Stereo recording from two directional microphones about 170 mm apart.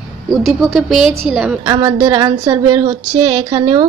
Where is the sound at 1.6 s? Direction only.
25° right (ahead or behind).